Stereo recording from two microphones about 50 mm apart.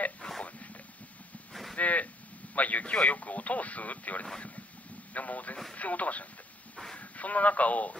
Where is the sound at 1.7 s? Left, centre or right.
Left.